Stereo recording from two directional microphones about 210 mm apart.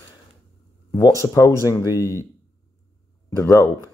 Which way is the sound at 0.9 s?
15° left (ahead or behind).